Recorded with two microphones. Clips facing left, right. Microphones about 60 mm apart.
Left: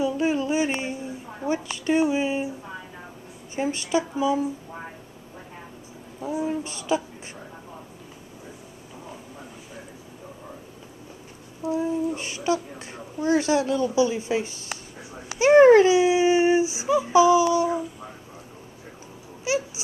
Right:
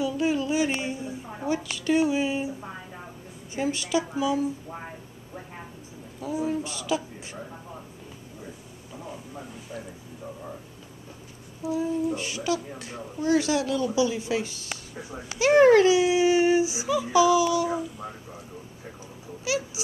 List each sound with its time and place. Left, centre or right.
0.0 s music: left
1.5 s speech: left
3.5 s speech: left
6.2 s speech: left
11.6 s speech: left
19.4 s speech: left